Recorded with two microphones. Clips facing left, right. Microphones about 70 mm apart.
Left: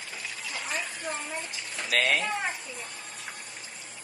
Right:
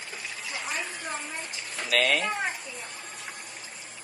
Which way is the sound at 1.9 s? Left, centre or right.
Right.